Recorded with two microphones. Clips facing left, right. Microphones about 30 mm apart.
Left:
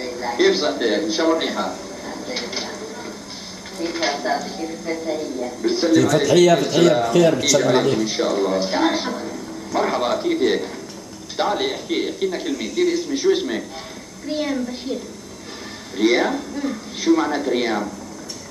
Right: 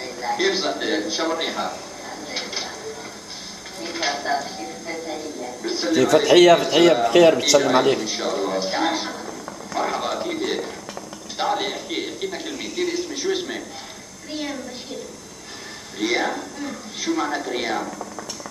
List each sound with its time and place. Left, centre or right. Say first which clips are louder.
0.0 s a man's voice: left 4 dB; centre
2.0 s mechanisms: left 3 dB; centre
3.8 s a man's voice: left 3 dB; centre
5.9 s a man's voice: even; centre
6.2 s a man's voice: right 4 dB; right
6.5 s a man's voice: even; centre
8.0 s a man's voice: left 4 dB; centre
16.0 s a man's voice: left 5 dB; centre